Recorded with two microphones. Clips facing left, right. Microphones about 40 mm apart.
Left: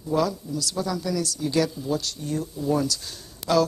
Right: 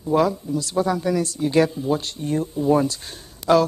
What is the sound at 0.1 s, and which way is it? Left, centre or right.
A woman's voice, right.